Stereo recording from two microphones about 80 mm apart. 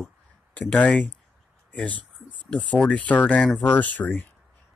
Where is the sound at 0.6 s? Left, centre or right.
Centre.